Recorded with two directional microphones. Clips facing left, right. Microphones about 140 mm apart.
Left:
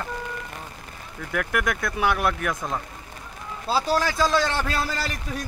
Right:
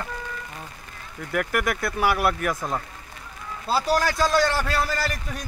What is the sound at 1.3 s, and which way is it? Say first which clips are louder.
Speech: right 1 dB; 5° right (ahead or behind).